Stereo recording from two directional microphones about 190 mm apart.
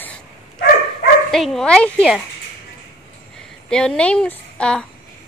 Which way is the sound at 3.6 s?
5° left (ahead or behind).